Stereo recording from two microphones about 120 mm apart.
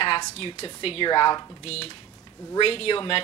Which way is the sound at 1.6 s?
55° left (ahead or behind).